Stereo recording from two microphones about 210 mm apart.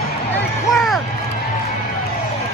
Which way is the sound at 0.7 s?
Centre (ahead or behind).